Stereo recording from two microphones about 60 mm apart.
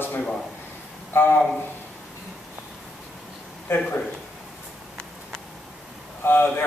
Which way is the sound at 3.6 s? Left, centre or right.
Left.